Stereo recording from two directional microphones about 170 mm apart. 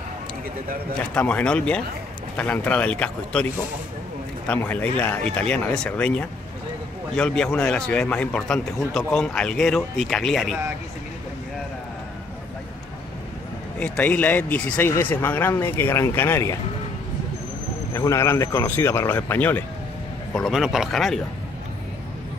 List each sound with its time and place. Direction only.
0.9 s speech: 5° left (ahead or behind)
4.5 s a man's voice: 10° left (ahead or behind)
13.7 s speech: 5° left (ahead or behind)
17.9 s speech: 20° left (ahead or behind)
20.3 s a man's voice: centre (ahead or behind)